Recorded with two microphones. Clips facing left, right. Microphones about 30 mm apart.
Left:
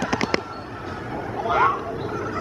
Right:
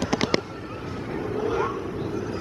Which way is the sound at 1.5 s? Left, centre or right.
Left.